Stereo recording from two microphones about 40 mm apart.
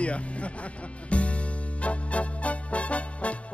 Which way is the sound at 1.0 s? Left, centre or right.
Left.